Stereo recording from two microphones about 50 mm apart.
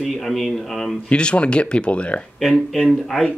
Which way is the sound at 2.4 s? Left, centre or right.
Centre.